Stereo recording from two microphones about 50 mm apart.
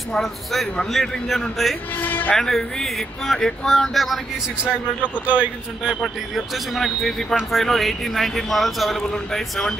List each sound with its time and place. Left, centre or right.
0.1 s speech: centre
2.0 s speech: left
2.3 s speech: centre
5.2 s speech: right
5.9 s a man's voice: centre